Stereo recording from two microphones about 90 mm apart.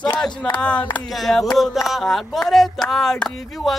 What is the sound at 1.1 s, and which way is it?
Speech, centre (ahead or behind).